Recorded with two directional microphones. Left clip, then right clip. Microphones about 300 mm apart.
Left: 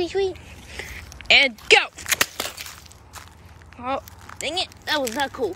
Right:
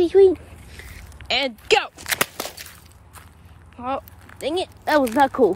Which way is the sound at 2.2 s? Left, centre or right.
Centre.